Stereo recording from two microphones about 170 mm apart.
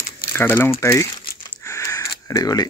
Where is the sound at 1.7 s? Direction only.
20° left (ahead or behind).